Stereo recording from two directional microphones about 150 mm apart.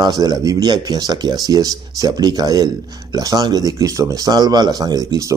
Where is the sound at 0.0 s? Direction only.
25° right (ahead or behind).